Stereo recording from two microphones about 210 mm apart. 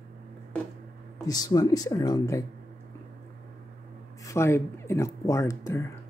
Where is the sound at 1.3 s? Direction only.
15° left (ahead or behind).